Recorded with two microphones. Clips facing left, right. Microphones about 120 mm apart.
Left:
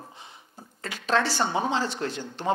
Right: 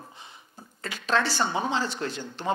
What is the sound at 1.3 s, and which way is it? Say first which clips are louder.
Speech: left 1 dB; 30° left (ahead or behind).